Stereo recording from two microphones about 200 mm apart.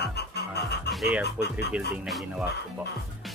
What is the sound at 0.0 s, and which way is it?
Music, 55° left (ahead or behind).